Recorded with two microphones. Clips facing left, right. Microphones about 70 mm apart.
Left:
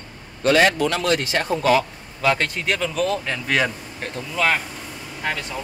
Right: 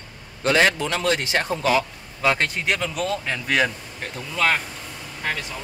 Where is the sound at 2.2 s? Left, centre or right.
Centre.